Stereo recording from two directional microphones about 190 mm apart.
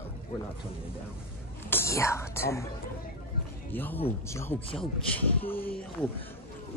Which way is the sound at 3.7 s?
10° left (ahead or behind).